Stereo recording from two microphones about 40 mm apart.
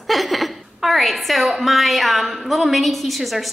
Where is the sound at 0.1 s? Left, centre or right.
Centre.